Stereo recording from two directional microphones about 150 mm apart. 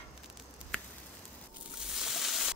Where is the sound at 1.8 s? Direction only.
5° right (ahead or behind).